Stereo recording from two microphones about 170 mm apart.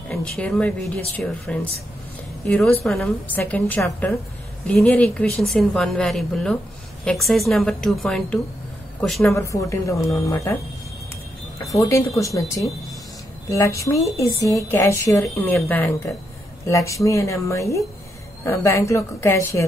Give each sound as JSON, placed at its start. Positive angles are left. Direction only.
{"t": 0.1, "sound": "a woman's voice", "side_deg": 5}
{"t": 9.3, "sound": "a woman's voice", "side_deg": 15}
{"t": 16.6, "sound": "a woman's voice", "side_deg": 20}